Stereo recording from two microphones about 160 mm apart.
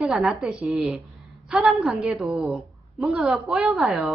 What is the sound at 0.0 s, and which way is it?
A woman's voice, centre (ahead or behind).